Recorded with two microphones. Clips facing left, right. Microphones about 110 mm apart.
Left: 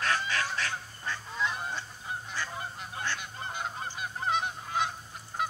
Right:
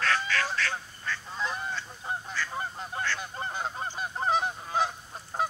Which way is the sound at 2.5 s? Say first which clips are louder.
Right 4 dB; 35° right (ahead or behind).